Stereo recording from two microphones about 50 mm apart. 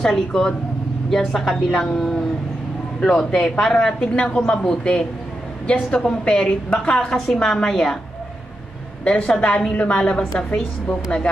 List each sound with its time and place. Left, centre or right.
0.0 s a woman's voice: centre
9.0 s a woman's voice: left